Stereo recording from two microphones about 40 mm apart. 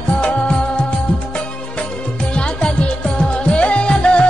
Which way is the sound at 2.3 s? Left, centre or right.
Left.